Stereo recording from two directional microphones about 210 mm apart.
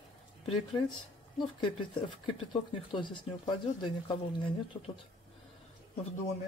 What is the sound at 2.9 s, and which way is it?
Speech, 25° left (ahead or behind).